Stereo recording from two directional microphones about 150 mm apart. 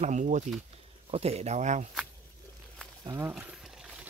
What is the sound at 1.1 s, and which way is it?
Speech, 45° right (ahead or behind).